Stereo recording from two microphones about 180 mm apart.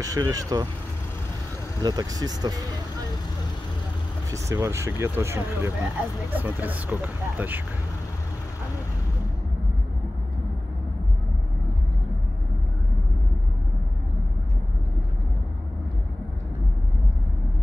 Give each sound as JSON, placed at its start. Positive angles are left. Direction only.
{"t": 0.0, "sound": "speech", "side_deg": -20}
{"t": 1.8, "sound": "speech", "side_deg": -20}
{"t": 4.3, "sound": "speech", "side_deg": -15}